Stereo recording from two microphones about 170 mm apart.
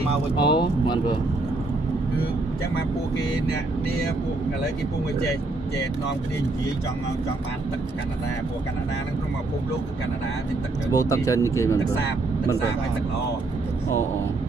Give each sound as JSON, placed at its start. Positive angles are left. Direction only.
{"t": 0.4, "sound": "speech", "side_deg": 25}
{"t": 10.9, "sound": "speech", "side_deg": 20}